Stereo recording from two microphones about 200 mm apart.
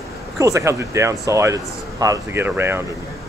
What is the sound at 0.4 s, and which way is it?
Speech, 15° right (ahead or behind).